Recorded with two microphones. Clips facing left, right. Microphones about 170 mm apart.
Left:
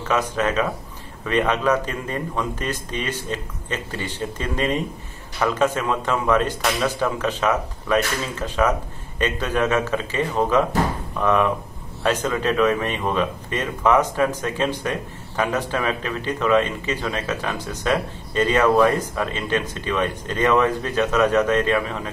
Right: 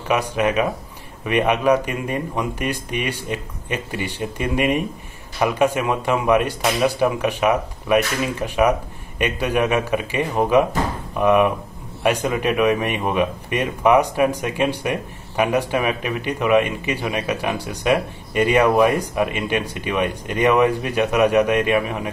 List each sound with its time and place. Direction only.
0.1 s speech: 15° right (ahead or behind)